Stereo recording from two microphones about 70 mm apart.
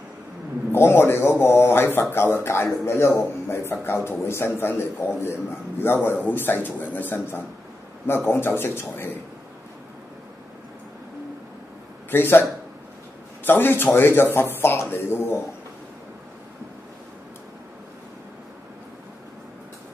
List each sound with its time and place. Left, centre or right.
0.7 s a man's voice: left
8.3 s a man's voice: left
12.1 s a man's voice: left
13.5 s a man's voice: left